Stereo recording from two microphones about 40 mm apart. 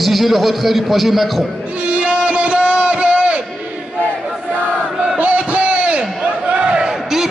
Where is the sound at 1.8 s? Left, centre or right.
Right.